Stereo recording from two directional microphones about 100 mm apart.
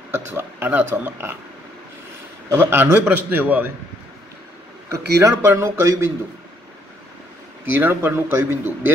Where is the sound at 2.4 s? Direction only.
25° right (ahead or behind).